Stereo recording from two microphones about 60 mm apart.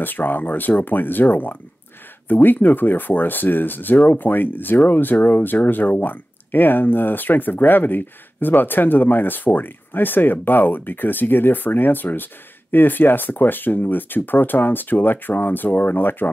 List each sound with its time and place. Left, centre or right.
0.0 s speech: left